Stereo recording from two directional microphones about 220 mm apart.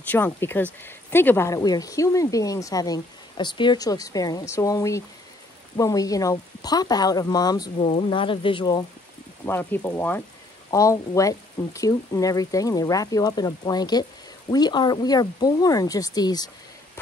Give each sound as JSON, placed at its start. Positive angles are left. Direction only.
{"t": 0.1, "sound": "speech", "side_deg": 10}
{"t": 9.5, "sound": "speech", "side_deg": 10}